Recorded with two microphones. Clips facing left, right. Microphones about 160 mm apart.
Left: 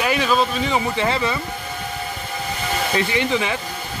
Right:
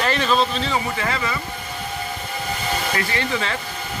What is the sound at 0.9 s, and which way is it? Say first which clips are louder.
Speech: left 4 dB; 25° left (ahead or behind).